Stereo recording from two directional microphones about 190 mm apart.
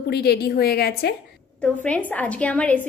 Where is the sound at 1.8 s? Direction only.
5° left (ahead or behind).